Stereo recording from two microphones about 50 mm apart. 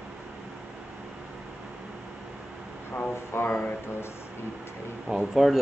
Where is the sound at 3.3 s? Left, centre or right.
Left.